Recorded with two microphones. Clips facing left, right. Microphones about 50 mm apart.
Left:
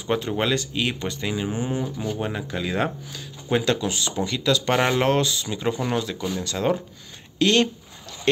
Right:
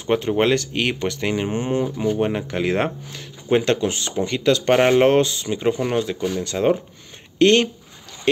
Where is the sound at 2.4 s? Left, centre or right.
Right.